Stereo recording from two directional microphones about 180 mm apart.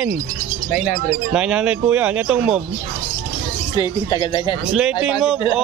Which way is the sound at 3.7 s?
25° left (ahead or behind).